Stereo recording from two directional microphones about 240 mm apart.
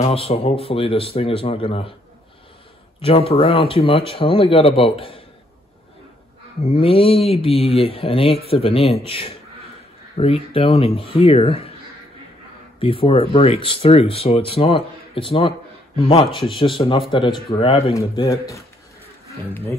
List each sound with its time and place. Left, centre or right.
0.0 s speech: left
3.0 s speech: left
6.6 s speech: left
12.8 s speech: left